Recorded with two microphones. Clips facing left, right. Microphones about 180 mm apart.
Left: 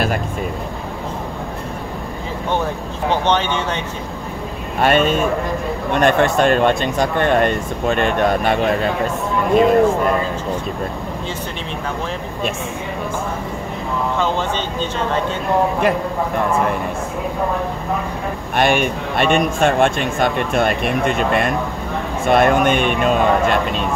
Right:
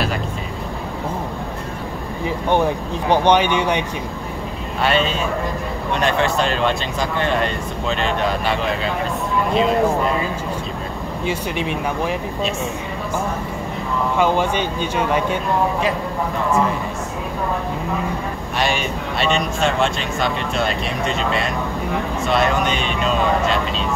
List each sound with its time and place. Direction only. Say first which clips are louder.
3.1 s speech: right 3 dB; 15° right (ahead or behind)
4.7 s speech: left 4 dB; 50° left (ahead or behind)
14.1 s speech: right 4 dB; 10° right (ahead or behind)
18.6 s speech: left 5 dB; 55° left (ahead or behind)